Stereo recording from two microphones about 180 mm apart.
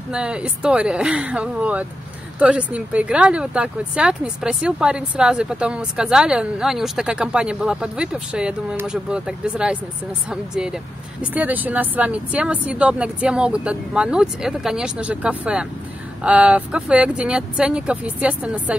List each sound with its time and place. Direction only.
0.1 s speech: 5° right (ahead or behind)